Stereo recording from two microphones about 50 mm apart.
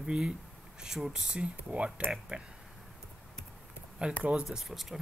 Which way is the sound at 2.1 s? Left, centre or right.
Centre.